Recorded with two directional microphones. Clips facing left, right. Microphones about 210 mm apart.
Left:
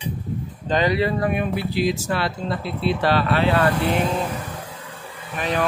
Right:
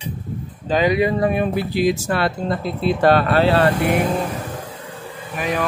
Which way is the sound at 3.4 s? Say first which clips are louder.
Right 3 dB; 35° right (ahead or behind).